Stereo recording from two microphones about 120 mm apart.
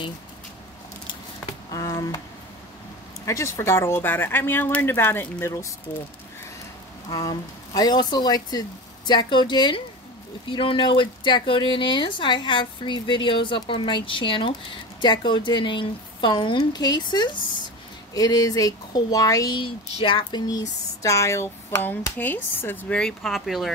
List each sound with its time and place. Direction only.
1.7 s a sound: 30° left (ahead or behind)
3.3 s speech: 25° left (ahead or behind)
7.1 s speech: 30° left (ahead or behind)
19.6 s speech: 45° left (ahead or behind); by 23.7 s centre (ahead or behind)